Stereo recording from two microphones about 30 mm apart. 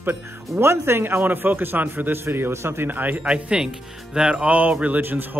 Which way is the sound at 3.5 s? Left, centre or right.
Right.